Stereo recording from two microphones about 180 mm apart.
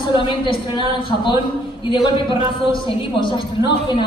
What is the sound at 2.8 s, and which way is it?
A woman's voice, 25° left (ahead or behind).